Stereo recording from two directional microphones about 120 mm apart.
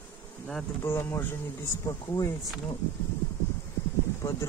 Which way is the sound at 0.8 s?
20° left (ahead or behind).